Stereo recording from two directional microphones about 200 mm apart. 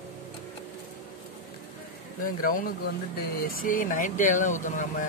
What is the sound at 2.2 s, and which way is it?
Speech, 45° left (ahead or behind).